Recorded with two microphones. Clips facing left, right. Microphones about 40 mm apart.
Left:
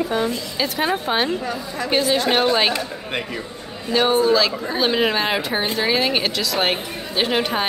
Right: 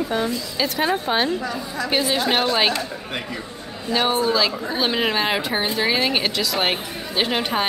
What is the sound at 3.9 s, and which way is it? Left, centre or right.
Speech, centre.